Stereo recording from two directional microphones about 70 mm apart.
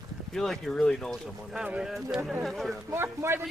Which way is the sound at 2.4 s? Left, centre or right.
Centre.